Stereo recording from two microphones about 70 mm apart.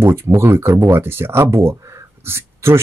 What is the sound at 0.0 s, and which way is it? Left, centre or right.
Speech, right.